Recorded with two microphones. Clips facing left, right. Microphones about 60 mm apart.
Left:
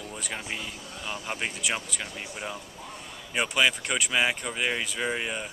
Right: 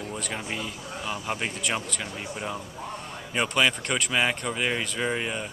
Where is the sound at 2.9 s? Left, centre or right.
Right.